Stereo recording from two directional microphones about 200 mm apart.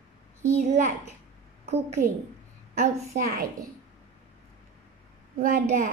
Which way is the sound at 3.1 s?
45° right (ahead or behind).